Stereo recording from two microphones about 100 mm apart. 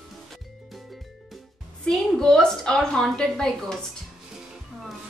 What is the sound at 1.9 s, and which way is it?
A woman's voice, 5° left (ahead or behind).